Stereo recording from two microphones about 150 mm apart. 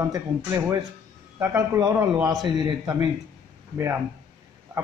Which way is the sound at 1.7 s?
20° right (ahead or behind).